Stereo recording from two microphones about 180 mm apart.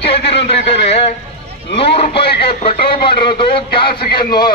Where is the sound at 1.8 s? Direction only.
30° left (ahead or behind).